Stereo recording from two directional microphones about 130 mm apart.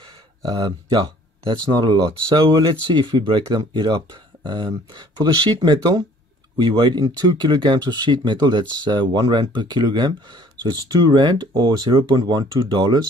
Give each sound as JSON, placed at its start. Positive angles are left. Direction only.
{"t": 0.4, "sound": "speech", "side_deg": -30}